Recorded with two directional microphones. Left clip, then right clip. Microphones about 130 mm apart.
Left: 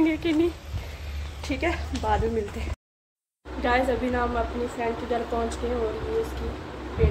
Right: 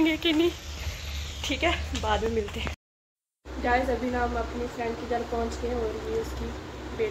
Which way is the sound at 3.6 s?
10° left (ahead or behind).